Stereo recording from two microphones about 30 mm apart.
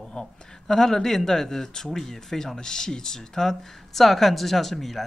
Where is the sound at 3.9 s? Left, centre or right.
Centre.